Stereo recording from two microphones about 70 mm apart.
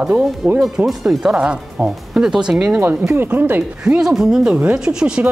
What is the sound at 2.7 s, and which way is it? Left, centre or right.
Speech, right.